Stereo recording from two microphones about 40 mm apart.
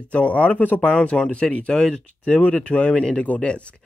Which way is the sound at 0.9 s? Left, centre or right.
Left.